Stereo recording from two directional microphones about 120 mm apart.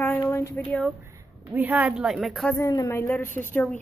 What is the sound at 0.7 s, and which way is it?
Speech, 10° left (ahead or behind).